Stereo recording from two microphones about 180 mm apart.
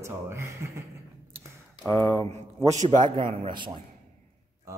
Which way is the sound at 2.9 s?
25° right (ahead or behind).